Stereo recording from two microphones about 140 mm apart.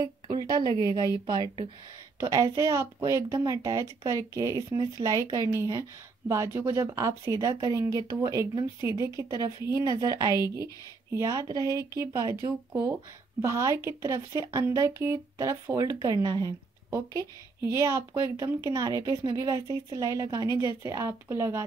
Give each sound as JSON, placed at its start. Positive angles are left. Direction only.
{"t": 0.0, "sound": "a woman's voice", "side_deg": -30}
{"t": 0.7, "sound": "a woman's voice", "side_deg": 30}
{"t": 1.2, "sound": "speech", "side_deg": -30}